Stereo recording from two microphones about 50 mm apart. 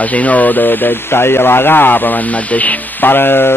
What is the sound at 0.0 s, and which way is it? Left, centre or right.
Speech, left.